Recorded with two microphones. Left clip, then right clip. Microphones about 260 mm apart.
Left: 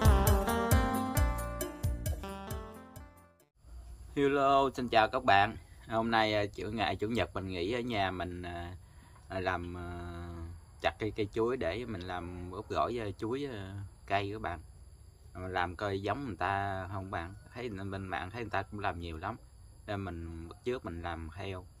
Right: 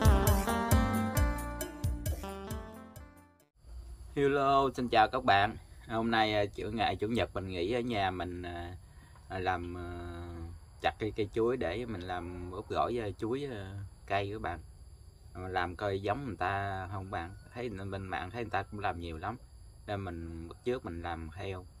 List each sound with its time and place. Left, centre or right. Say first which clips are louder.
0.0 s music: even; centre
4.1 s speech: even; centre